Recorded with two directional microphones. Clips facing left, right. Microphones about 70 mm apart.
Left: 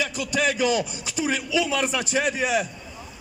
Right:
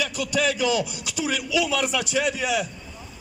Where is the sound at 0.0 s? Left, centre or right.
Left.